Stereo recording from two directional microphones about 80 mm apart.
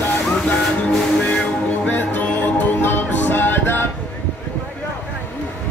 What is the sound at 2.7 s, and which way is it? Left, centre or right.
Music, left.